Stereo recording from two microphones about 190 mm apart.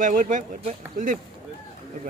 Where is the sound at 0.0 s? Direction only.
45° right (ahead or behind).